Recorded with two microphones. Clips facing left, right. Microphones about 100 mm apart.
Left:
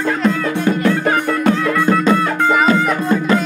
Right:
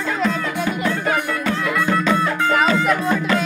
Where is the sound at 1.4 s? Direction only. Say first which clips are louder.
Left 7 dB; 35° left (ahead or behind).